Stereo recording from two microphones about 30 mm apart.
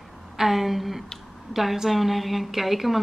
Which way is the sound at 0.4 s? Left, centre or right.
Centre.